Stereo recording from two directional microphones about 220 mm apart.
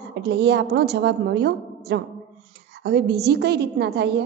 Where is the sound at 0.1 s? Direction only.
50° right (ahead or behind).